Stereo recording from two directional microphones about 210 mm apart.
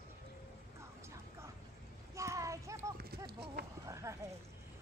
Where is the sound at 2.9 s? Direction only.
45° right (ahead or behind).